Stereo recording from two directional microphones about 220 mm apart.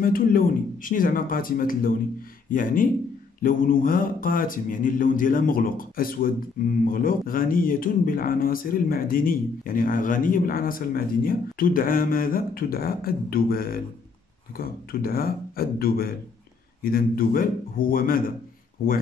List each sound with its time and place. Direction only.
0.0 s mantra: 40° left (ahead or behind)
14.6 s speech: 40° left (ahead or behind)
16.8 s mantra: 40° left (ahead or behind)